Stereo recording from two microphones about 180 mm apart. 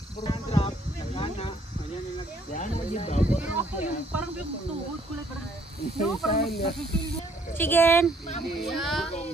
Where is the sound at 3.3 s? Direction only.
10° right (ahead or behind).